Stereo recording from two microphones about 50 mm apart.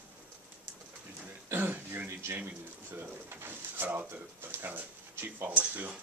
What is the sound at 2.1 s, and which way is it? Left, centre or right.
Speech, right.